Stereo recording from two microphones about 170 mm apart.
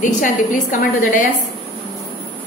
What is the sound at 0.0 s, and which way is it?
A woman's voice, 50° left (ahead or behind).